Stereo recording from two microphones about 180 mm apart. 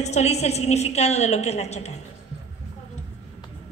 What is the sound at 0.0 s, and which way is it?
A woman's voice, 40° left (ahead or behind).